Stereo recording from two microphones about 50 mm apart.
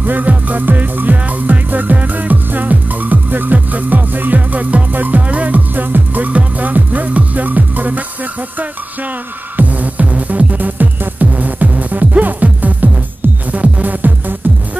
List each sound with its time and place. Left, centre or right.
0.0 s music: right
9.6 s music: right